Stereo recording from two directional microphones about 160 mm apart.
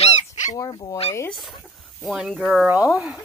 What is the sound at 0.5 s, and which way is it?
Speech, 25° left (ahead or behind).